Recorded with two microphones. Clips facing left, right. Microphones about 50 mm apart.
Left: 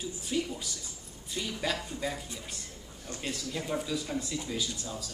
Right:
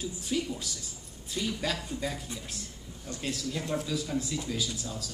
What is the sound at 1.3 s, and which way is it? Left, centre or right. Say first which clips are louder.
Speech: right 1 dB; centre.